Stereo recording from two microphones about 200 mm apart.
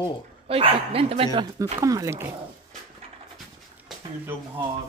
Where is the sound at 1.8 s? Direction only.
15° right (ahead or behind).